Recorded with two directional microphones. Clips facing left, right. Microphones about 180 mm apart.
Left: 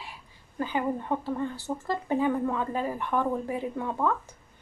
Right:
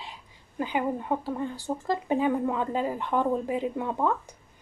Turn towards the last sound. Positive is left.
turn(degrees=-15)  # may be behind; listen again after turning